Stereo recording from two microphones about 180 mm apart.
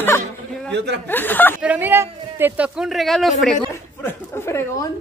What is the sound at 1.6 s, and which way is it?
Speech, 10° right (ahead or behind).